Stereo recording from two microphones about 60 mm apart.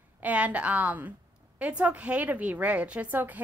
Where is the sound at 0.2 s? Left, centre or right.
Right.